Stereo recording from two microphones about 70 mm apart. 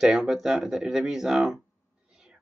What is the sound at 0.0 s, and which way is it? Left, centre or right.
Speech, centre.